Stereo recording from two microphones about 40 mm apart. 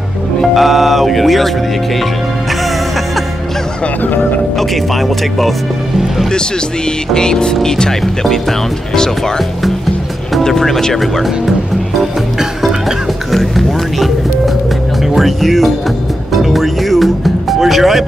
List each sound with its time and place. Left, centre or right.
0.6 s mantra: centre
4.6 s speech: centre
7.2 s speech: centre
10.4 s speech: centre
13.3 s music: centre
15.1 s speech: centre